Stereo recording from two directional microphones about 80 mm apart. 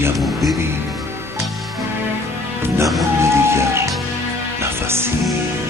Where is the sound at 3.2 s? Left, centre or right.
Right.